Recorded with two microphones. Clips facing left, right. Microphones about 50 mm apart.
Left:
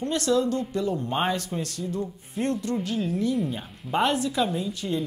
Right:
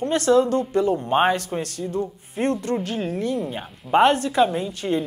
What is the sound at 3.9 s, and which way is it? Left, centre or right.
Speech, right.